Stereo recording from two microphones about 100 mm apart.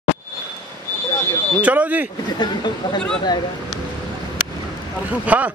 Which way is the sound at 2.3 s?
45° left (ahead or behind).